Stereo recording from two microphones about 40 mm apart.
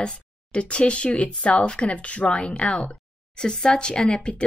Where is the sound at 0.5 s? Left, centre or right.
Left.